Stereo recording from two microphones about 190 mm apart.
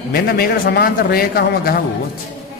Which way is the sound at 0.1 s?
55° left (ahead or behind).